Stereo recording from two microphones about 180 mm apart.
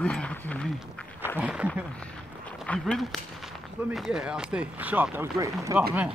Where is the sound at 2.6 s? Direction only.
5° left (ahead or behind); by 5.8 s 15° right (ahead or behind).